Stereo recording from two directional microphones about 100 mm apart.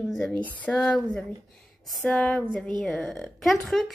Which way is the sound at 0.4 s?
15° left (ahead or behind).